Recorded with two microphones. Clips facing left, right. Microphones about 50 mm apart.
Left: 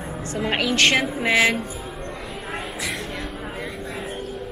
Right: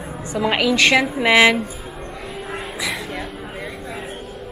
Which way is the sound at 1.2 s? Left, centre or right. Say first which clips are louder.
Right 6 dB; right.